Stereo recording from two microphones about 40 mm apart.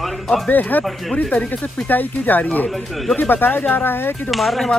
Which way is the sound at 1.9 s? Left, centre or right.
Left.